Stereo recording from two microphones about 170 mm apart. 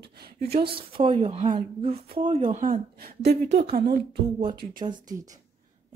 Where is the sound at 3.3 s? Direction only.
90° right.